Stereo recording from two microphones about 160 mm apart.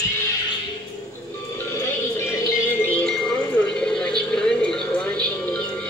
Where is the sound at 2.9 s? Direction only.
5° left (ahead or behind).